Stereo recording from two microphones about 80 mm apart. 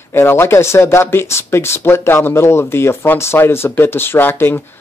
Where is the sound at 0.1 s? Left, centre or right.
Left.